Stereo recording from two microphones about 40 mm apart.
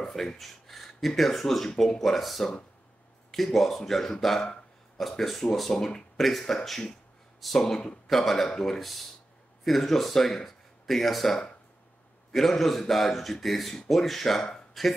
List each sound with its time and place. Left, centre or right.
0.0 s speech: centre
6.1 s speech: centre
7.6 s speech: centre
8.1 s speech: centre
14.7 s a sound: centre